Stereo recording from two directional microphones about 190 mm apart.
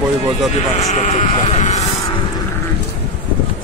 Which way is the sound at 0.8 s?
40° left (ahead or behind).